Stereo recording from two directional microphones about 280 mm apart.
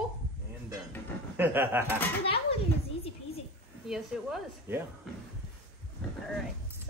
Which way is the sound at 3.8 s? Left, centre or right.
Centre.